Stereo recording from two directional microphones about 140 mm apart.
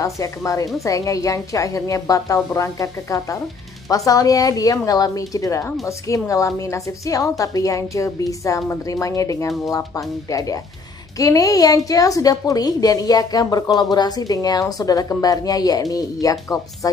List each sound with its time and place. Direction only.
0.0 s a woman's voice: 25° left (ahead or behind)